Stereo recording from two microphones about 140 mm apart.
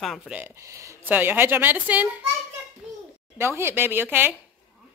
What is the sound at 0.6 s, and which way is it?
A woman's voice, 20° right (ahead or behind).